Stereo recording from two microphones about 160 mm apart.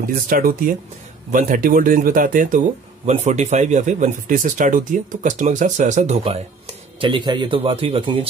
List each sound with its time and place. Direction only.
0.0 s speech: 60° right (ahead or behind)
7.0 s a man's voice: 30° right (ahead or behind)